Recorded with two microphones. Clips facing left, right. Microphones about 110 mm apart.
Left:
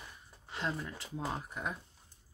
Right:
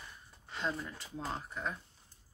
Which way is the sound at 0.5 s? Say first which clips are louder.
Even; centre (ahead or behind).